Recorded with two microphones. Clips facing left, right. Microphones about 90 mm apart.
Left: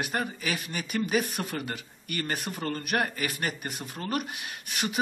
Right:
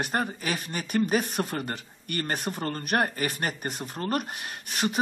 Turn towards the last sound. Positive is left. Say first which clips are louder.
# right 4 dB
turn(degrees=-40)  # may be behind; listen again after turning